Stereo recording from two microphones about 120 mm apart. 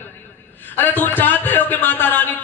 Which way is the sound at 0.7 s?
15° left (ahead or behind).